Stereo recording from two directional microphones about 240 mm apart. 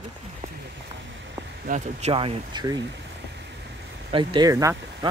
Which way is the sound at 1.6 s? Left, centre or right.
Right.